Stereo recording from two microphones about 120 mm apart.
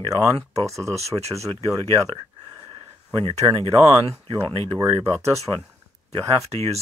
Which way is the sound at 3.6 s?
50° right (ahead or behind).